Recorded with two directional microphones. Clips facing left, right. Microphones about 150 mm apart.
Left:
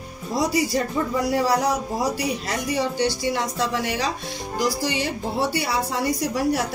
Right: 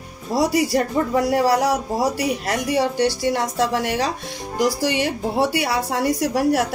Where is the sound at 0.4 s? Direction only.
60° right (ahead or behind).